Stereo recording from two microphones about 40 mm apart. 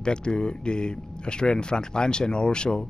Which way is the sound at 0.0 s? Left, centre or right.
Left.